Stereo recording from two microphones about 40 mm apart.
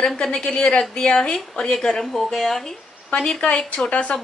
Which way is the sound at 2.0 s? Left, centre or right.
Centre.